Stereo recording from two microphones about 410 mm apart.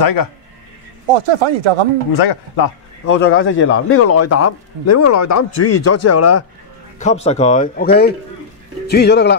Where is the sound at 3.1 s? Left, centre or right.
Left.